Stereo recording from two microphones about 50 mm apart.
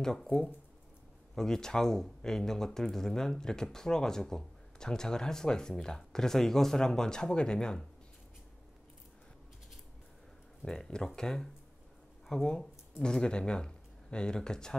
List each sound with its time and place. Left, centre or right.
0.0 s speech: centre
10.6 s speech: centre